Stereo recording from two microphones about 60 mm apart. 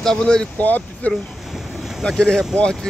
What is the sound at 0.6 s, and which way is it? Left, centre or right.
Speech, left.